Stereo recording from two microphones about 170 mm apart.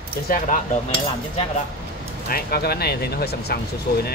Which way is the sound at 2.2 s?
65° left (ahead or behind).